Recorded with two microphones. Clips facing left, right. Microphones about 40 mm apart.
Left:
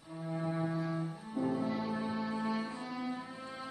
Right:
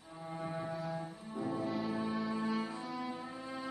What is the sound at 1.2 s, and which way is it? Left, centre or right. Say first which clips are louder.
Cello: left 4 dB; centre.